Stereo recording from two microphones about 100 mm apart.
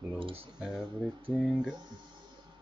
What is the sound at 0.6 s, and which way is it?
Speech, 5° right (ahead or behind).